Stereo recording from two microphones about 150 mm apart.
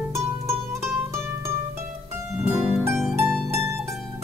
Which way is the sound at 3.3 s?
5° left (ahead or behind).